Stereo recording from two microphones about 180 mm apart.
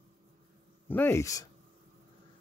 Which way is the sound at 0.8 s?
10° left (ahead or behind).